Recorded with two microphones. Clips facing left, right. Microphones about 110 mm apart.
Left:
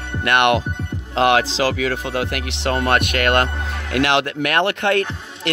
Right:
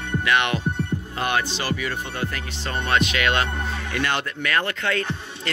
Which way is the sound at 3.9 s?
80° left.